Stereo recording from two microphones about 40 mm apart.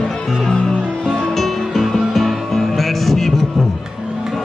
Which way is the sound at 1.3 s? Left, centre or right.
Centre.